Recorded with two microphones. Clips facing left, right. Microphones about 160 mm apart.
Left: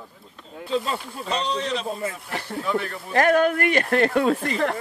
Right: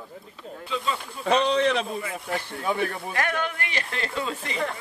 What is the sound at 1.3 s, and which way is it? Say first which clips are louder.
Speech: right 5 dB; 60° right (ahead or behind).